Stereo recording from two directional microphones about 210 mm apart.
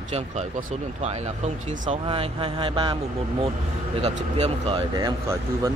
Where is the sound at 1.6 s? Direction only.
35° right (ahead or behind).